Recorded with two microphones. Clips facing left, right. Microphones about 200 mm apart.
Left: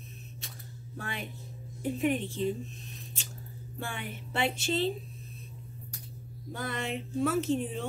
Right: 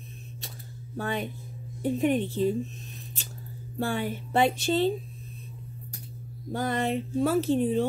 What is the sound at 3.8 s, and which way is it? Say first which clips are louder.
Speech: right 10 dB; 35° right (ahead or behind).